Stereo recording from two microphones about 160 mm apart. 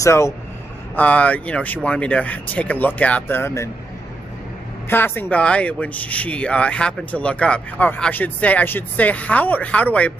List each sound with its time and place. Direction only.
0.0 s speech: 20° left (ahead or behind)
4.8 s speech: 15° left (ahead or behind)